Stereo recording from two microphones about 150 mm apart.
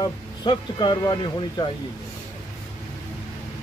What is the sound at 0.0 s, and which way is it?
Speech, 30° left (ahead or behind).